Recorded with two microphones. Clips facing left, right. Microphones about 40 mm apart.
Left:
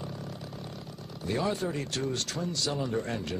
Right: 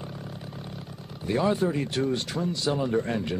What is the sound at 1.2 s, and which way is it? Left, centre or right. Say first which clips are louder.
Speech: right 6 dB; centre.